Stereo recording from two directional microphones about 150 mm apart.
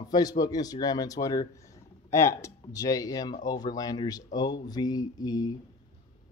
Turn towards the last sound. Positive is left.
turn(degrees=25)  # may be behind; listen again after turning